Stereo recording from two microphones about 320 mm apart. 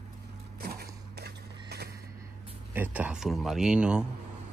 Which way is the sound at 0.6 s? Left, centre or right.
Right.